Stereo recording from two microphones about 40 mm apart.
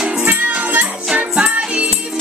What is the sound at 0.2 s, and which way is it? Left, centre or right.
Music, right.